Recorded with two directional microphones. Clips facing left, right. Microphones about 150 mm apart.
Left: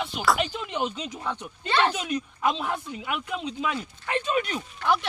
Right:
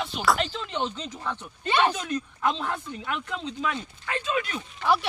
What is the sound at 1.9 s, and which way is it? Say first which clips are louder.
Speech: left 1 dB; 15° left (ahead or behind).